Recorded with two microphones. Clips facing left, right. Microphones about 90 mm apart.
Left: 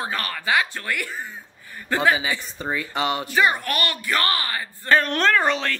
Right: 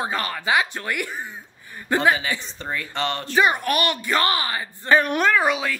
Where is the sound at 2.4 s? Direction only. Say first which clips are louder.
Left 2 dB; 10° left (ahead or behind).